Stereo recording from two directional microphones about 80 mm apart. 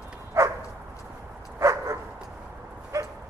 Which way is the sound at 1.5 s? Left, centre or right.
Right.